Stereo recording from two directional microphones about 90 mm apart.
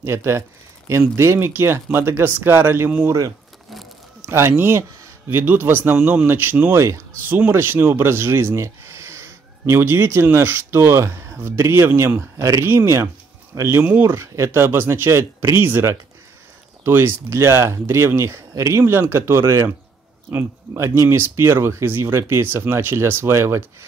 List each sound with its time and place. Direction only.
0.0 s speech: 30° right (ahead or behind)
3.1 s speech: 40° right (ahead or behind)
4.3 s speech: 25° right (ahead or behind)
5.9 s speech: 10° right (ahead or behind)
6.2 s speech: 20° right (ahead or behind)
6.8 s speech: 30° right (ahead or behind)